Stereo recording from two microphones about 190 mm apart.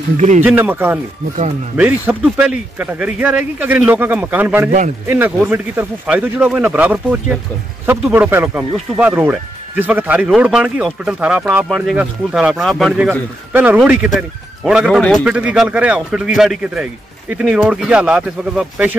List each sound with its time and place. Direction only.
0.4 s speech: 10° right (ahead or behind)
4.6 s a man's voice: 40° right (ahead or behind)
5.0 s speech: 10° right (ahead or behind)